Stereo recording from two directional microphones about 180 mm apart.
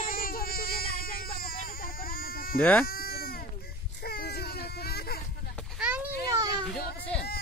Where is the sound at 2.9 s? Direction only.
60° left (ahead or behind).